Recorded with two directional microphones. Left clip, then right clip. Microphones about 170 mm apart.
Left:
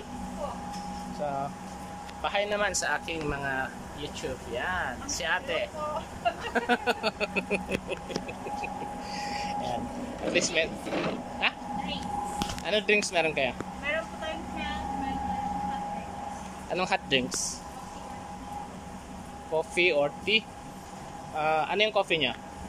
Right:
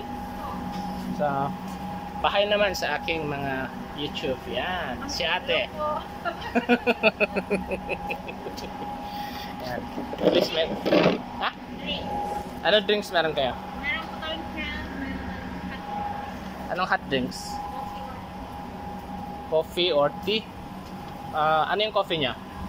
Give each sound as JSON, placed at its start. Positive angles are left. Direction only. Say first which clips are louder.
{"t": 1.2, "sound": "speech", "louder": "right 6 dB", "side_deg": 10}
{"t": 7.3, "sound": "speech", "louder": "right 2 dB", "side_deg": 5}
{"t": 10.3, "sound": "speech", "louder": "left 1 dB", "side_deg": 15}
{"t": 10.9, "sound": "speech", "louder": "right 11 dB", "side_deg": -55}
{"t": 11.4, "sound": "speech", "louder": "left 2 dB", "side_deg": 20}
{"t": 12.6, "sound": "speech", "louder": "right 4 dB", "side_deg": 5}
{"t": 16.7, "sound": "speech", "louder": "right 2 dB", "side_deg": 20}
{"t": 19.5, "sound": "speech", "louder": "right 2 dB", "side_deg": 10}